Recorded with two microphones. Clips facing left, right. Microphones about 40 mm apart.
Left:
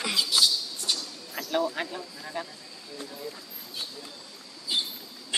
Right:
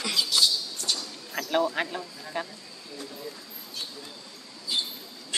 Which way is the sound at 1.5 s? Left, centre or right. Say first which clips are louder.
Right 2 dB; right.